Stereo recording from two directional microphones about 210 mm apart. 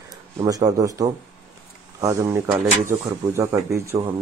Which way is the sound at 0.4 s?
15° right (ahead or behind).